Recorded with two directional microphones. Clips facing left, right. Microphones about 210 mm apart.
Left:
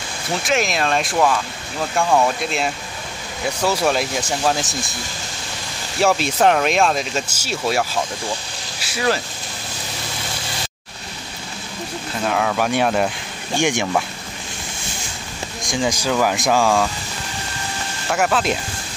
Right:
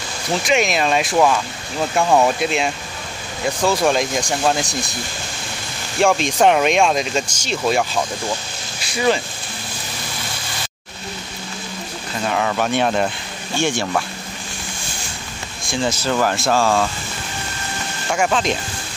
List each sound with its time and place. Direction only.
0.4 s speech: centre (ahead or behind)
2.0 s speech: 15° right (ahead or behind)
3.4 s speech: 5° left (ahead or behind)
5.9 s speech: 5° left (ahead or behind)
12.2 s speech: centre (ahead or behind)
13.6 s speech: 15° left (ahead or behind)
15.6 s speech: 15° left (ahead or behind)
18.1 s speech: 5° left (ahead or behind)